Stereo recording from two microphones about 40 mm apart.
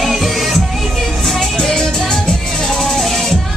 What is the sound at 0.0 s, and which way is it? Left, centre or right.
Music, centre.